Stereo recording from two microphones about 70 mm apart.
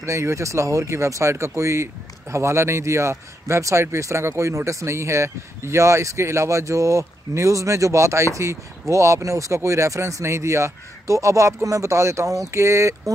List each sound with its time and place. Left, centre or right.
0.0 s speech: right